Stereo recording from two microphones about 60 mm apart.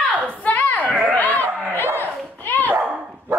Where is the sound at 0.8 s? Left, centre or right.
Right.